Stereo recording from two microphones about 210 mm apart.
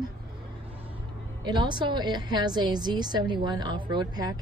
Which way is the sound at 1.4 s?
20° right (ahead or behind).